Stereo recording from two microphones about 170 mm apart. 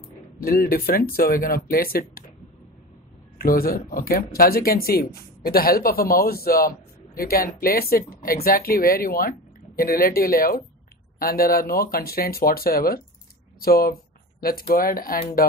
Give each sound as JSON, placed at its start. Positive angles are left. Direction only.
{"t": 0.4, "sound": "speech", "side_deg": 60}
{"t": 3.3, "sound": "speech", "side_deg": 60}